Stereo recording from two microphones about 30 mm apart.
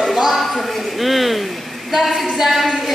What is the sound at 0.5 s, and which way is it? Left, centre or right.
A woman's voice, centre.